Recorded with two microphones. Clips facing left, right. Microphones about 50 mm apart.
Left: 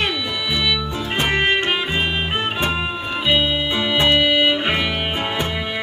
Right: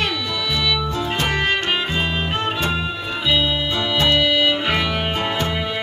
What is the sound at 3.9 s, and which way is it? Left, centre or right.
Music, left.